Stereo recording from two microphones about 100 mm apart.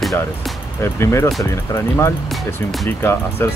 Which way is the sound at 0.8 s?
30° left (ahead or behind).